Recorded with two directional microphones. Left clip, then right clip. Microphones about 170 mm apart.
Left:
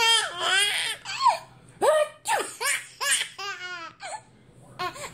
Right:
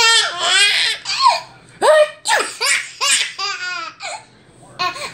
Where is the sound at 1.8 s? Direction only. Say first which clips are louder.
Right 10 dB; 30° left (ahead or behind).